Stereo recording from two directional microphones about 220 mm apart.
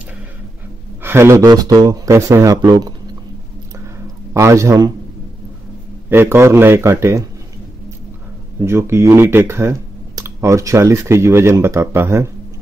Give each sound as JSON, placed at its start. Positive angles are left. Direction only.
{"t": 1.0, "sound": "speech", "side_deg": -10}
{"t": 4.3, "sound": "speech", "side_deg": -15}
{"t": 6.0, "sound": "speech", "side_deg": -10}
{"t": 8.5, "sound": "speech", "side_deg": -10}